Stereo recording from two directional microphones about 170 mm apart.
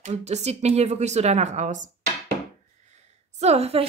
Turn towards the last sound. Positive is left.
turn(degrees=-35)  # may be behind; listen again after turning